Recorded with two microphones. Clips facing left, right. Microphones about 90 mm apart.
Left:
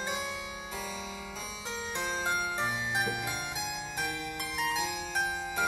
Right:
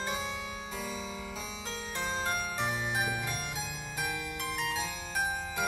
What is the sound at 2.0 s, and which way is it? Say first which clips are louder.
Music: left 1 dB; 15° left (ahead or behind).